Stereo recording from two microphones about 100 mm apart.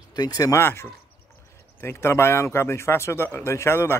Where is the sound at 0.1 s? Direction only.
40° left (ahead or behind).